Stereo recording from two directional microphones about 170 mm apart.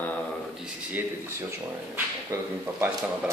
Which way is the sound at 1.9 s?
15° right (ahead or behind).